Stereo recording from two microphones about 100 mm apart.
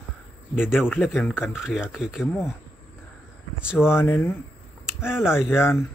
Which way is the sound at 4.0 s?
25° left (ahead or behind).